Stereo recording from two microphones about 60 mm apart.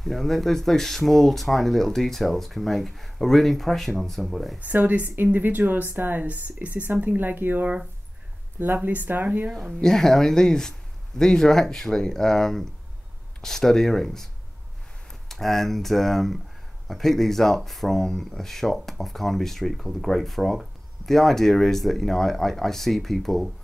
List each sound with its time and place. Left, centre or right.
0.0 s speech: centre
4.6 s speech: right
9.5 s speech: centre
9.8 s speech: centre